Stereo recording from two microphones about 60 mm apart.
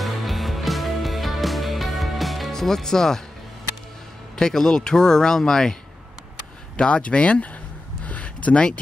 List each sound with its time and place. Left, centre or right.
0.0 s music: centre
4.4 s speech: centre
6.8 s speech: centre
8.0 s a sound: left